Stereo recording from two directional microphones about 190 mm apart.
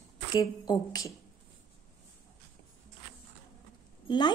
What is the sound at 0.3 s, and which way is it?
Speech, 20° left (ahead or behind).